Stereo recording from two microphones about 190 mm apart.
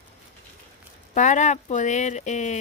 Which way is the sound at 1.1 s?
40° left (ahead or behind).